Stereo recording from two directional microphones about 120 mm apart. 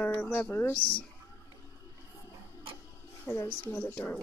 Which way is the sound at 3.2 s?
20° left (ahead or behind).